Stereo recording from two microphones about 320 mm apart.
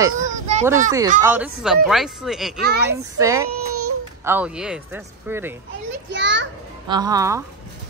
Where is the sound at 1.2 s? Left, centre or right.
Centre.